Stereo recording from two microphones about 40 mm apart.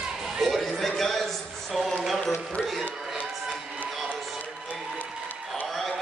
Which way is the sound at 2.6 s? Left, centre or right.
Centre.